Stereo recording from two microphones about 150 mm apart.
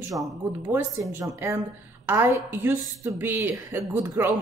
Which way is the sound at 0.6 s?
20° right (ahead or behind).